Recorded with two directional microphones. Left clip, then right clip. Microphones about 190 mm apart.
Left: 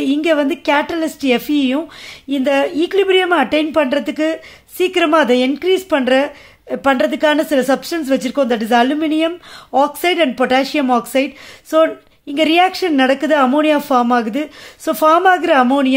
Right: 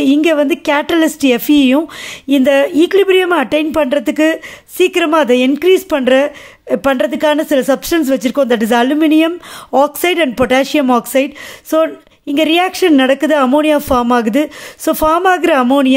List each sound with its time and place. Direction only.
0.0 s speech: 30° right (ahead or behind)